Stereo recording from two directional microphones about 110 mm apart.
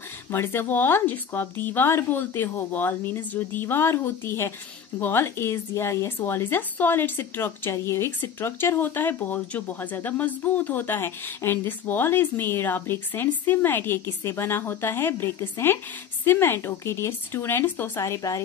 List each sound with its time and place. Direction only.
0.3 s a woman's voice: 20° left (ahead or behind)